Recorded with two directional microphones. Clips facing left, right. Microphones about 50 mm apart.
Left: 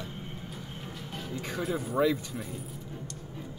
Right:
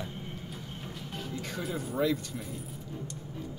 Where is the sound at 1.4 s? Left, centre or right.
Centre.